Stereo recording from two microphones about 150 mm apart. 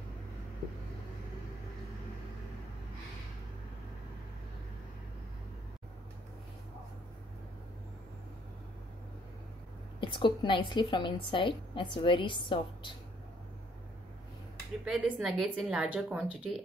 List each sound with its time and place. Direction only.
9.9 s a woman's voice: 35° left (ahead or behind)
14.9 s a woman's voice: 5° right (ahead or behind)